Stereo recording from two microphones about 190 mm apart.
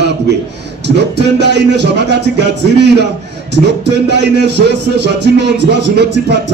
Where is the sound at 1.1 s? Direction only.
65° right (ahead or behind).